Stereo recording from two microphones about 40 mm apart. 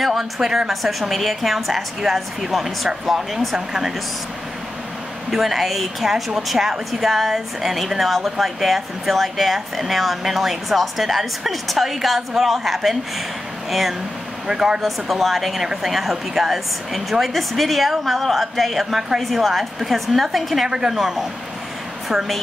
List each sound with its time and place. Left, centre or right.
0.0 s speech: centre
5.3 s speech: centre
14.5 s speech: centre
14.8 s speech: centre
20.6 s speech: centre
21.0 s speech: centre
22.1 s speech: centre